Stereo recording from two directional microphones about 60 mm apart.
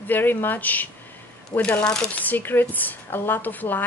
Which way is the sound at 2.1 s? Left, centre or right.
Left.